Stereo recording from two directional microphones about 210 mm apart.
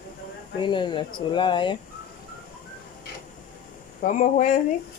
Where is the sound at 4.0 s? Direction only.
40° left (ahead or behind).